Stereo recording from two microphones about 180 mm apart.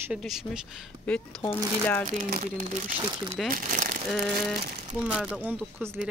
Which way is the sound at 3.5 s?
45° right (ahead or behind).